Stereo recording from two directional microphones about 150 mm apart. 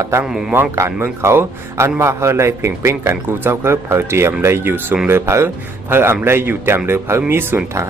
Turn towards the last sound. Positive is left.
turn(degrees=-15)  # may be behind; listen again after turning